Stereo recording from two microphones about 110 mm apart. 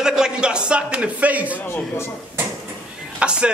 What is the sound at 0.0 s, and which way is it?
A man's voice, 5° right (ahead or behind).